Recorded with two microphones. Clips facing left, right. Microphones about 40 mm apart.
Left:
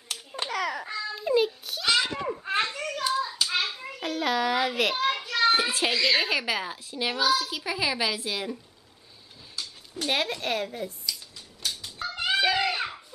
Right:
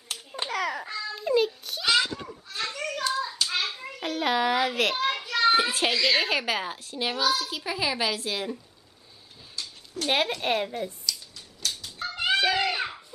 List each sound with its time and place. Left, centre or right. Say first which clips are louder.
0.3 s a sound: even; centre
2.4 s children playing: left 7 dB; left
2.7 s hands: left 1 dB; centre
4.6 s a child's voice: even; centre
10.0 s a woman's voice: right 2 dB; centre
11.1 s a sound: right 2 dB; centre